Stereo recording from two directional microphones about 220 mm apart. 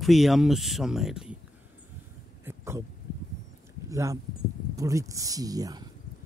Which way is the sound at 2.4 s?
10° right (ahead or behind).